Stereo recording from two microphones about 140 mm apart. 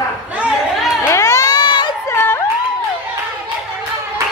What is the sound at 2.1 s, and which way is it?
Music, 20° left (ahead or behind).